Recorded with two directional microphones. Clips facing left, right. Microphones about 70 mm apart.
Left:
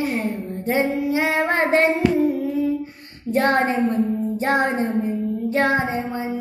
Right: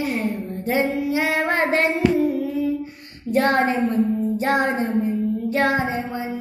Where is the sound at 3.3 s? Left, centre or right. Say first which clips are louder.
Even; left.